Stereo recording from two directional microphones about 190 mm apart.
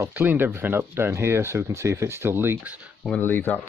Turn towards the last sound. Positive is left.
turn(degrees=10)  # may be behind; listen again after turning